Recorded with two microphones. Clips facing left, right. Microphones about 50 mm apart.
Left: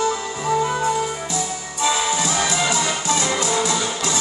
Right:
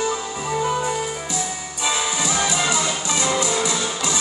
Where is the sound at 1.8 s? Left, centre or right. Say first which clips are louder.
Left 3 dB; centre.